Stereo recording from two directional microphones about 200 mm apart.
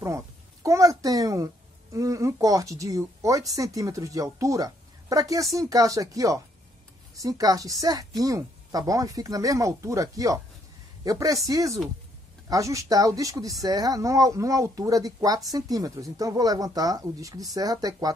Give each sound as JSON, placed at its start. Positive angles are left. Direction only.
{"t": 0.7, "sound": "speech", "side_deg": -15}